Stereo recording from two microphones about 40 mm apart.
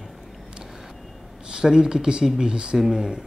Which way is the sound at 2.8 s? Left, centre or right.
Centre.